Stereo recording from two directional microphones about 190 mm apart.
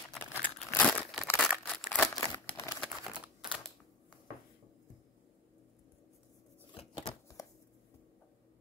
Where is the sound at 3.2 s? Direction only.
5° right (ahead or behind).